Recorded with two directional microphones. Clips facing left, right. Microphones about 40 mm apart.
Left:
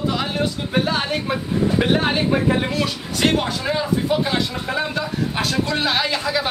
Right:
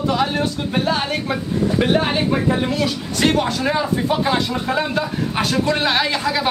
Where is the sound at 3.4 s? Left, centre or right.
Centre.